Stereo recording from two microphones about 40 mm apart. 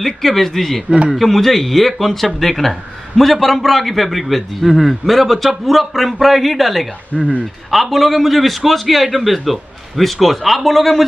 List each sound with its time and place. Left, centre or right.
0.0 s speech: centre
0.8 s a man's voice: right
1.1 s a man's voice: centre
7.1 s speech: left
7.7 s a man's voice: centre